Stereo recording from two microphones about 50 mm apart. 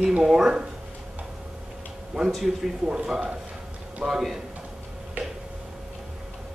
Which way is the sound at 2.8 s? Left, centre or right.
Centre.